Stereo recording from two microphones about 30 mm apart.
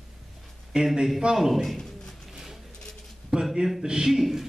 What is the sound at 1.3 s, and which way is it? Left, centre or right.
Speech, centre.